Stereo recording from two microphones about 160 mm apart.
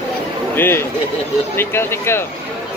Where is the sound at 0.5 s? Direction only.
15° left (ahead or behind).